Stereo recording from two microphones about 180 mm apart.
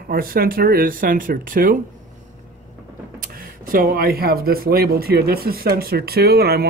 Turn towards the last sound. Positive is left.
turn(degrees=-60)  # may be behind; listen again after turning